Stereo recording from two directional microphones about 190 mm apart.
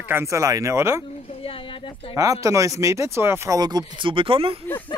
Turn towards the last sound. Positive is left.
turn(degrees=-30)  # may be behind; listen again after turning